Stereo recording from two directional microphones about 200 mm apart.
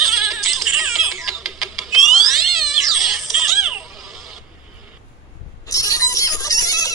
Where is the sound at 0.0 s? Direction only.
Centre (ahead or behind).